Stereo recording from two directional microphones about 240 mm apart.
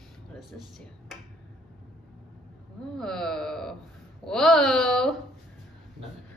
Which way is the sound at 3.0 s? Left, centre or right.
Centre.